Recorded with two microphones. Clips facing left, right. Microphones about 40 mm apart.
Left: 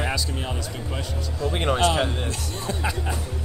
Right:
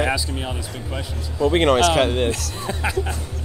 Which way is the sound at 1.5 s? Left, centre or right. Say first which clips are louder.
Right 5 dB; right.